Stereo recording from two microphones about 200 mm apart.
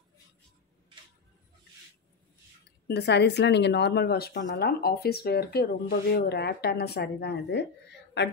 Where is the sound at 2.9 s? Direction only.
55° left (ahead or behind).